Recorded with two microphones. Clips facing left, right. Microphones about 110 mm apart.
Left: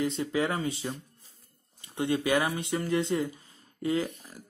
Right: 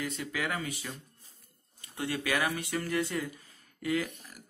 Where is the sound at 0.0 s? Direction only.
30° left (ahead or behind).